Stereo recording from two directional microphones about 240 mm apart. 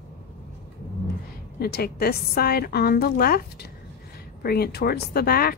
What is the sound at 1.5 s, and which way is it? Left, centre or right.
Speech, left.